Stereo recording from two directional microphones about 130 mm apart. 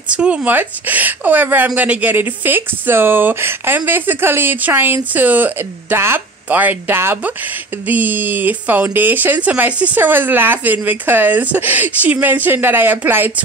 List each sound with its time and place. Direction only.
0.1 s speech: 10° right (ahead or behind)